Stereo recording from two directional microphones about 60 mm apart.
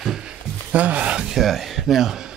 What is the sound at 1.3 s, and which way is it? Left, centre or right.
Speech, centre.